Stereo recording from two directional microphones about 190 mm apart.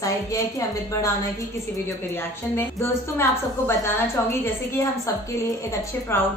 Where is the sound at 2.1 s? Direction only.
15° left (ahead or behind).